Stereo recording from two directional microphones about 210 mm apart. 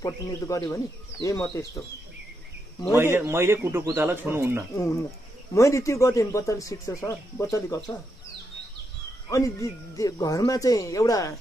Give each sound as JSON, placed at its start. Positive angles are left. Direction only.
{"t": 0.0, "sound": "speech", "side_deg": 15}
{"t": 3.0, "sound": "speech", "side_deg": -10}
{"t": 5.5, "sound": "speech", "side_deg": 15}
{"t": 9.3, "sound": "speech", "side_deg": 15}